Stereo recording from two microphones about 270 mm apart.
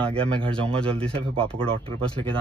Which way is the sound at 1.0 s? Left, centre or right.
Centre.